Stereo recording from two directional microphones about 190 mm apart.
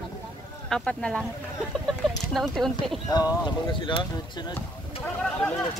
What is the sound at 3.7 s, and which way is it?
Speech, 25° left (ahead or behind).